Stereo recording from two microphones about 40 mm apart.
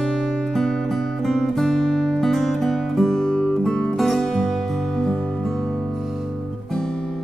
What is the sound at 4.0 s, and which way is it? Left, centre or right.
Music, centre.